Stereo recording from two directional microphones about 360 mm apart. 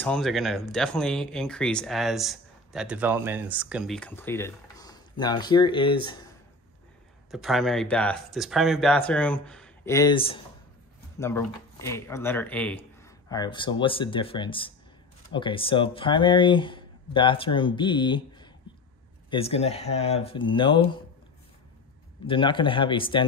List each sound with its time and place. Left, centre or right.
0.0 s speech: centre
7.2 s speech: centre
22.2 s speech: centre